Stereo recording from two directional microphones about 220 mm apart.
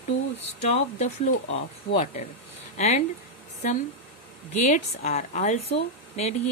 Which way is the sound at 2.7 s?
30° left (ahead or behind).